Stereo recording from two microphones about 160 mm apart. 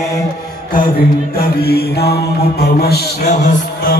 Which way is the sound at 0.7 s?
75° left (ahead or behind).